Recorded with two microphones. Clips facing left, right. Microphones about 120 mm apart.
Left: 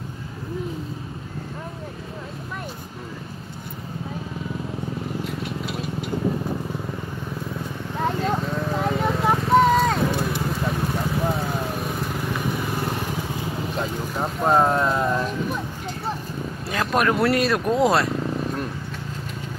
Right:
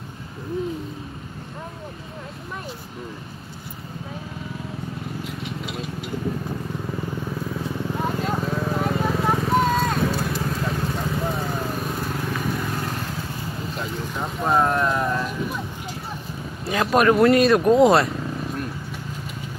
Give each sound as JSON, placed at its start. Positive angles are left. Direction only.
{"t": 5.4, "sound": "vehicle", "side_deg": 0}
{"t": 8.1, "sound": "vehicle", "side_deg": -5}
{"t": 14.6, "sound": "a sound", "side_deg": 25}
{"t": 16.6, "sound": "speech", "side_deg": 0}